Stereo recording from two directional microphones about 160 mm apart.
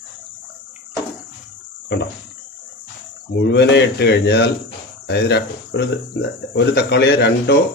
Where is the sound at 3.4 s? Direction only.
90° left.